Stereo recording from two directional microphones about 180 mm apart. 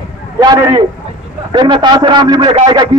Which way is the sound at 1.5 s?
25° right (ahead or behind).